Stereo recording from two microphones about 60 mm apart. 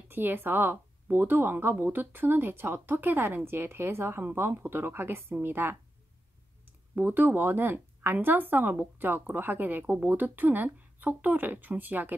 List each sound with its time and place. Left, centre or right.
0.1 s speech: right
7.0 s speech: right